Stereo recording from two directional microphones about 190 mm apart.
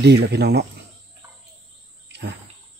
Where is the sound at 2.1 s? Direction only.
65° right (ahead or behind).